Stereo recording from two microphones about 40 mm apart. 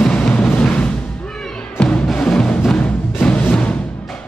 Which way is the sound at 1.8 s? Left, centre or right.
Centre.